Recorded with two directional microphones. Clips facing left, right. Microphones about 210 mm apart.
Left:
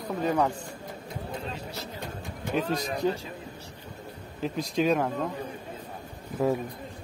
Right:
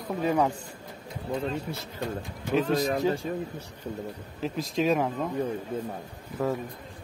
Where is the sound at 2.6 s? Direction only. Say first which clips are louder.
Right 5 dB; 55° right (ahead or behind).